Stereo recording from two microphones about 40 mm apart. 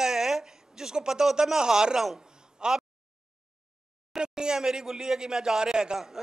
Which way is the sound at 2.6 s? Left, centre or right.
Centre.